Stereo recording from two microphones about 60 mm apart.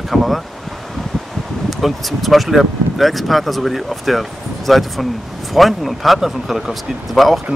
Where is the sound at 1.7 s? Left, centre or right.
Centre.